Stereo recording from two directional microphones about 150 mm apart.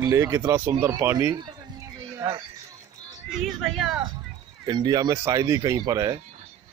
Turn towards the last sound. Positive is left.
turn(degrees=-25)  # may be behind; listen again after turning